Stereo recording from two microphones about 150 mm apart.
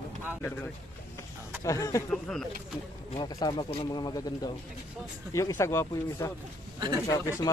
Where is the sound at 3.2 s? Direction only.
25° left (ahead or behind).